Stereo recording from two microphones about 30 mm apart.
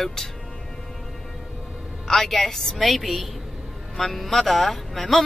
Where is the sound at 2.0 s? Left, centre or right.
Centre.